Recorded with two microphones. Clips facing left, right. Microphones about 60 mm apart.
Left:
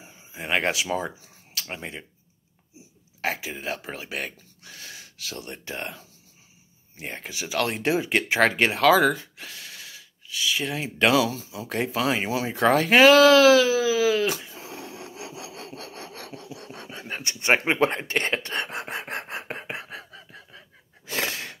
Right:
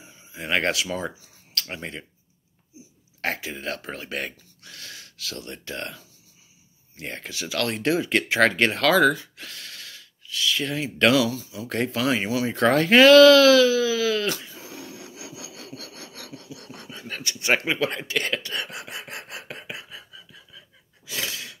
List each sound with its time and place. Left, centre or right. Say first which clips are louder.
0.4 s speech: right 1 dB; centre
3.2 s speech: even; centre
4.6 s speech: even; centre
7.0 s speech: right 1 dB; centre
11.2 s speech: right 1 dB; left
11.7 s speech: right 1 dB; centre
14.5 s wood: left 1 dB; left
19.8 s a sound: left 4 dB; left
20.2 s gasp: left 2 dB; left